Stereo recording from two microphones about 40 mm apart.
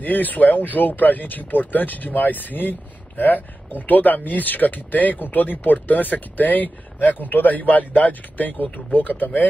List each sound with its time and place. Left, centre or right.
0.0 s speech: left